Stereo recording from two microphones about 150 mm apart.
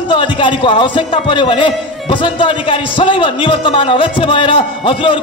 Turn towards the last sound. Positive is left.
turn(degrees=35)  # may be behind; listen again after turning